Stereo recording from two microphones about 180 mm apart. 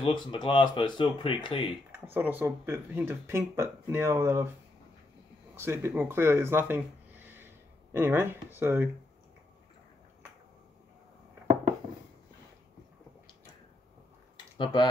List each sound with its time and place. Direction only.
0.0 s speech: 25° left (ahead or behind)
1.9 s speech: 10° right (ahead or behind)
5.6 s speech: 15° right (ahead or behind)
14.3 s a sound: 25° left (ahead or behind)